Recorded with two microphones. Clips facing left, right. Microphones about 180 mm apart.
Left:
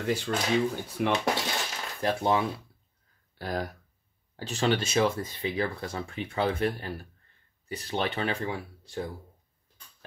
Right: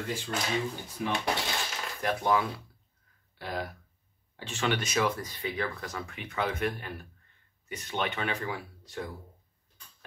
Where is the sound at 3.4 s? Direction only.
40° left (ahead or behind).